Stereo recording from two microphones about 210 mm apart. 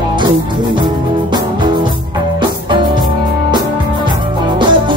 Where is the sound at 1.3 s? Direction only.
20° right (ahead or behind).